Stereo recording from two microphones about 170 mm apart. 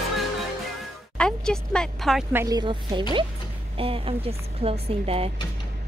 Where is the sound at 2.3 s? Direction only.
15° right (ahead or behind); by 5.3 s 35° right (ahead or behind).